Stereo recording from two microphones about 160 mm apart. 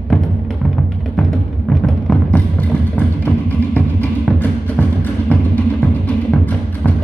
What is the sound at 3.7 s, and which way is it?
Music, 10° left (ahead or behind).